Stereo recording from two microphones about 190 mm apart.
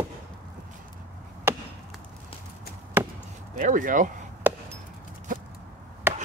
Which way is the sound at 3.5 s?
45° right (ahead or behind).